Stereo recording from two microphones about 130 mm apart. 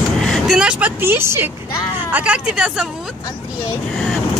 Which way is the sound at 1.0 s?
20° right (ahead or behind).